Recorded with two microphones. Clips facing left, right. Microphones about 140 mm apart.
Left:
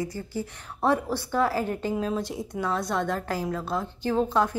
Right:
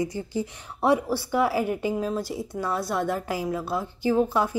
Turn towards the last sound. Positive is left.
turn(degrees=-10)  # may be behind; listen again after turning